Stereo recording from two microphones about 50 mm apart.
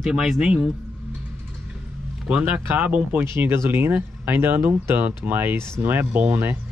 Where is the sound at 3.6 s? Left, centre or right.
Right.